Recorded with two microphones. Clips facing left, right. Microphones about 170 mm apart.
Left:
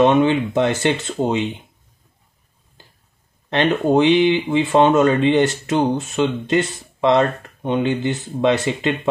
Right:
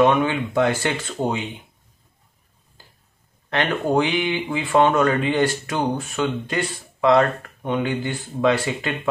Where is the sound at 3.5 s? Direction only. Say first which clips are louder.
Left 4 dB; 20° left (ahead or behind).